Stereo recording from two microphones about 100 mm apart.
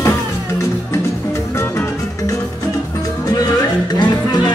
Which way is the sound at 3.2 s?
40° left (ahead or behind).